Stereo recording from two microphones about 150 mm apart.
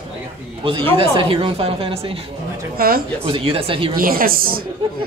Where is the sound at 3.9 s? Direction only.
75° right (ahead or behind).